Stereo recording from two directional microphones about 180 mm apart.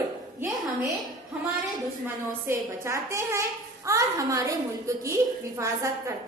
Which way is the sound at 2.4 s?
15° right (ahead or behind).